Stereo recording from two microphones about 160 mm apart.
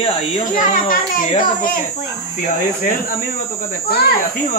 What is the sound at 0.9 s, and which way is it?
Speech, 60° left (ahead or behind).